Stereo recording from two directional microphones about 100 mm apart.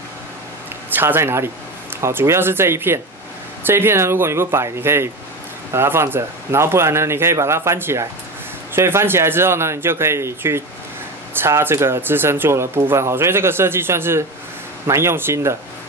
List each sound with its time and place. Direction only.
0.8 s speech: 20° right (ahead or behind)